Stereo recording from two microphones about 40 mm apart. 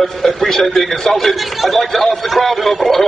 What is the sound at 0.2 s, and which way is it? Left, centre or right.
A man's voice, centre.